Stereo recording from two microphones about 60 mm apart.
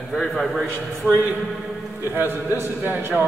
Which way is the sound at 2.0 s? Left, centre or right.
Right.